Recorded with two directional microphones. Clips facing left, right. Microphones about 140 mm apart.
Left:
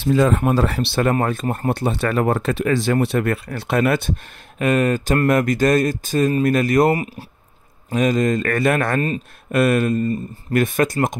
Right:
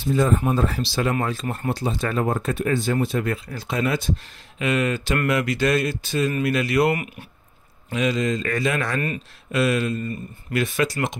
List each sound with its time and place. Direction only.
0.0 s speech: 90° left; by 4.1 s 60° left (ahead or behind)
4.6 s speech: 45° left (ahead or behind)
7.9 s speech: 45° left (ahead or behind)